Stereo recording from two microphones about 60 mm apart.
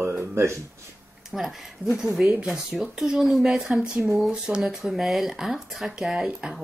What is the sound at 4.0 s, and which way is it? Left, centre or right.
Speech, centre.